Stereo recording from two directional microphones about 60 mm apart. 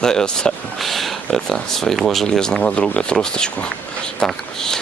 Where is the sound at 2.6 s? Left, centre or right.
Left.